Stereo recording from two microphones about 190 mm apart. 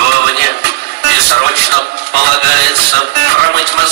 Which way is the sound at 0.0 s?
60° right (ahead or behind).